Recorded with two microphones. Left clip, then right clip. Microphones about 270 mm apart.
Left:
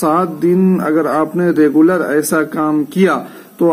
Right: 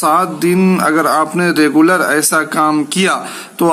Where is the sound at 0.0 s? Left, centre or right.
Centre.